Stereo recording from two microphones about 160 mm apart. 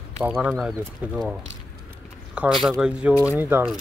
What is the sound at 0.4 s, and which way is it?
Speech, 5° right (ahead or behind).